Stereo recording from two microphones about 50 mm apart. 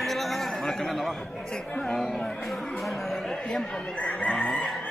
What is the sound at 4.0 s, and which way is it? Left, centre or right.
Speech, left.